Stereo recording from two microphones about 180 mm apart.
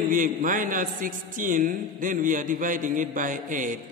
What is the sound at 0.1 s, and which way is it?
A man's voice, 50° right (ahead or behind).